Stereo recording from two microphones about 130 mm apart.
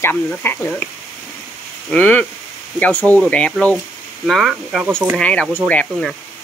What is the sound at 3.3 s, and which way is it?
Speech, 10° left (ahead or behind).